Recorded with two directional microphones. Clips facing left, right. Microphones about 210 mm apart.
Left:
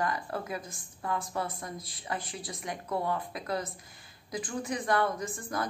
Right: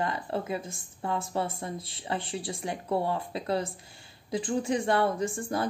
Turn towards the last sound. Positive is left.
turn(degrees=-30)  # may be behind; listen again after turning